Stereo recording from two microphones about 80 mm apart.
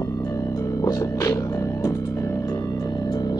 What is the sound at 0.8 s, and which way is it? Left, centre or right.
Music, left.